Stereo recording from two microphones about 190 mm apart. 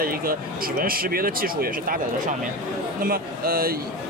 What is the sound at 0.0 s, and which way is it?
Speech, 50° right (ahead or behind).